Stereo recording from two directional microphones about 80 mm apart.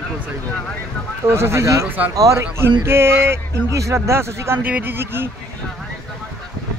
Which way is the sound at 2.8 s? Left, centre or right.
Right.